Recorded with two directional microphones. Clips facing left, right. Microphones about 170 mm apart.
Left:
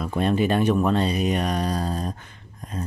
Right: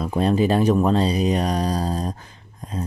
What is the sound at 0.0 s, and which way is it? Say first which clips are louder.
Speech: right 3 dB; 35° right (ahead or behind).